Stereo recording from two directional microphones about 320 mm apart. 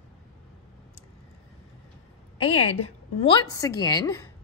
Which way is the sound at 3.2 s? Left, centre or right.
Centre.